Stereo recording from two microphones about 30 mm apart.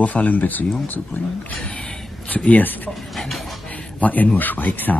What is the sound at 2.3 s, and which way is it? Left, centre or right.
Speech, left.